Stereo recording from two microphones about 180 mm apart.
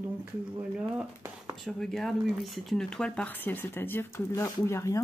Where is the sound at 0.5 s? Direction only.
15° right (ahead or behind).